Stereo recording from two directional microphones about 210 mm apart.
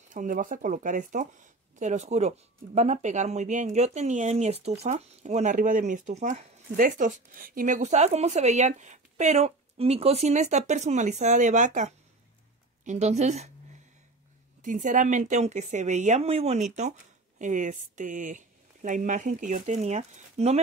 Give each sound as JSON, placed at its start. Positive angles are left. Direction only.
{"t": 0.1, "sound": "speech", "side_deg": -40}
{"t": 14.6, "sound": "speech", "side_deg": -35}